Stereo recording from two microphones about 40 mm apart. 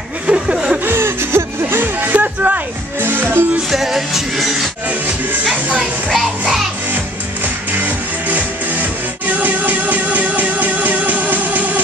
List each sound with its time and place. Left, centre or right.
0.3 s chuckle: right
0.8 s a sound: right
2.1 s music: right
3.0 s music: right
3.7 s music: centre
5.4 s music: right
7.8 s music: right